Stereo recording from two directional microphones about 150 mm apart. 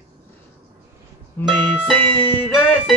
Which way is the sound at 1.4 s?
15° left (ahead or behind).